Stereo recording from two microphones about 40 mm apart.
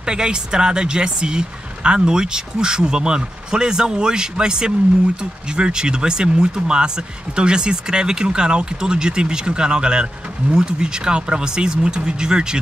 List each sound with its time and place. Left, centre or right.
0.0 s speech: centre